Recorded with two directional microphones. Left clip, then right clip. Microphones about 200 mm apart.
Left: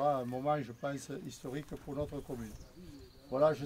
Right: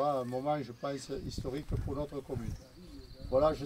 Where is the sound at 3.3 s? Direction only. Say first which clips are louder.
Right 1 dB; 5° left (ahead or behind).